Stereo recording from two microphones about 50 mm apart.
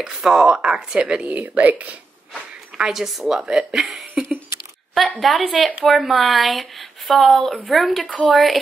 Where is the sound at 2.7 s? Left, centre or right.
Centre.